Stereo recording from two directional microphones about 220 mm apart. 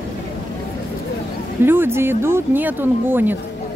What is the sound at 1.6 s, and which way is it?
Speech, 10° right (ahead or behind).